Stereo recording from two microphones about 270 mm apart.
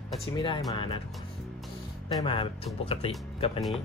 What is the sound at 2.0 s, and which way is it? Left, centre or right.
Speech, centre.